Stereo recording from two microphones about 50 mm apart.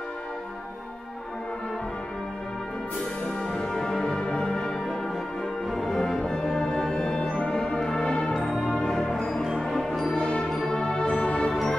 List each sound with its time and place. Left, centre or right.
3.5 s music: centre
5.7 s music: centre
7.4 s brass instrument: centre
9.1 s music: centre
10.1 s music: centre